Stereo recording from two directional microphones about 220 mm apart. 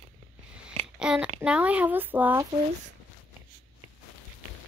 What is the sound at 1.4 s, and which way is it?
Speech, 5° right (ahead or behind).